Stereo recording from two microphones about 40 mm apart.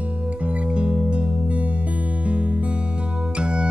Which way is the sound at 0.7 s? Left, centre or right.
Right.